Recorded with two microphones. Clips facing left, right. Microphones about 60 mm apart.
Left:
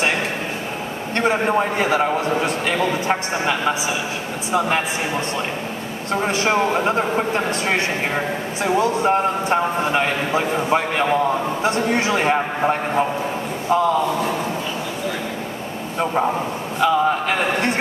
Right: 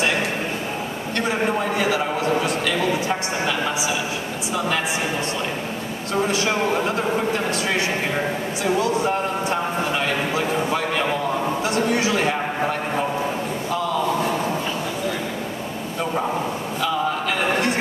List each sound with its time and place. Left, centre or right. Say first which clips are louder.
1.1 s a man's voice: left 4 dB; left
6.2 s a man's voice: left 4 dB; left
16.8 s a sound: left 6 dB; left